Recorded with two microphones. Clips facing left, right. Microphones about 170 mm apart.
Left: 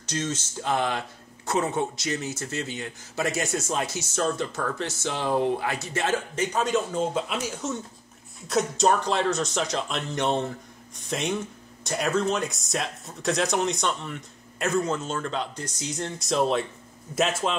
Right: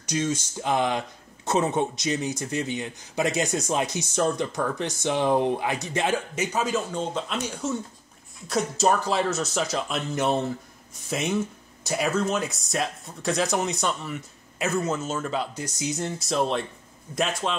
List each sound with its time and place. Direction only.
0.0 s speech: 10° right (ahead or behind); by 17.6 s 5° left (ahead or behind)